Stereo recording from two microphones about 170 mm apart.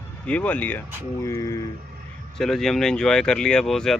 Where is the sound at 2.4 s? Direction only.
Centre (ahead or behind).